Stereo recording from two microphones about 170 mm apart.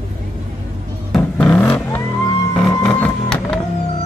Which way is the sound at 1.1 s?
5° left (ahead or behind).